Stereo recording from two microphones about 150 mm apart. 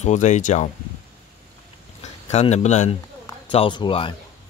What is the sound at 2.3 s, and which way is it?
Speech, 45° left (ahead or behind).